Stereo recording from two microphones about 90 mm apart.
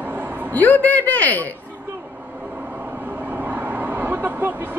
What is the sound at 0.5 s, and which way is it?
A man's voice, 20° left (ahead or behind).